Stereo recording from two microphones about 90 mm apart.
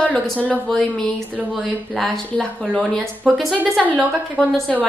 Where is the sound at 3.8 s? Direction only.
15° right (ahead or behind).